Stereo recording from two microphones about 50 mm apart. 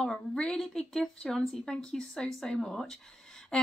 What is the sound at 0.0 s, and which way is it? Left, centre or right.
Speech, centre.